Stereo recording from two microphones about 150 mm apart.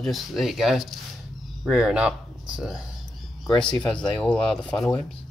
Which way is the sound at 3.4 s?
5° left (ahead or behind).